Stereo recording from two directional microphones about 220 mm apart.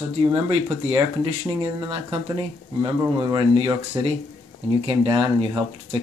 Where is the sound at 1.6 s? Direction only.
20° right (ahead or behind).